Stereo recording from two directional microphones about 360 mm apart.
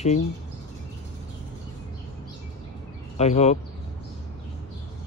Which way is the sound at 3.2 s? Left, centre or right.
Centre.